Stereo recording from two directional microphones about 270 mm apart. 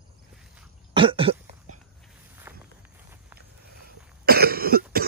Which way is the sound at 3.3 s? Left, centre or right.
Right.